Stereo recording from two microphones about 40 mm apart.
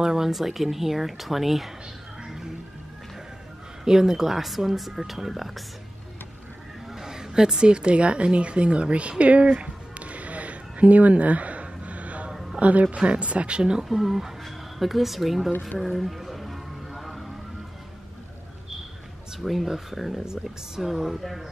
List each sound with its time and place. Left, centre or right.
0.0 s speech: centre
2.2 s music: centre
3.8 s speech: centre
6.9 s a woman's voice: centre; by 9.1 s right
9.2 s music: right
12.5 s speech: right
12.8 s speech: right
13.8 s speech: centre
16.0 s a sound: centre
19.4 s speech: centre
20.9 s speech: centre